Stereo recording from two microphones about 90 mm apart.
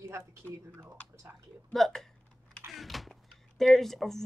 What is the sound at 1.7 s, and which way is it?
Speech, 5° left (ahead or behind).